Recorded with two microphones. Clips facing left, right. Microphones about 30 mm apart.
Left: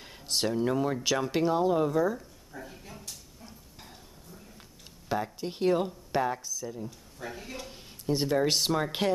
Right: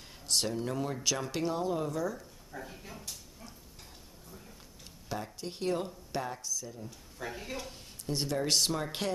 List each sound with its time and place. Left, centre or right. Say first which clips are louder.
0.0 s speech: left 2 dB; centre
2.1 s dog: left 2 dB; centre
5.0 s speech: left 7 dB; centre
7.2 s speech: right 1 dB; centre
7.7 s a sound: left 6 dB; centre
8.5 s speech: left 3 dB; centre